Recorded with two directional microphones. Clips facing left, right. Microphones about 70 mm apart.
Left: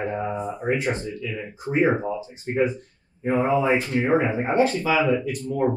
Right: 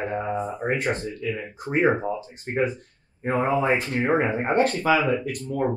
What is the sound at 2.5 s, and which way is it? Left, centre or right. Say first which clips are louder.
Speech: left 2 dB; right.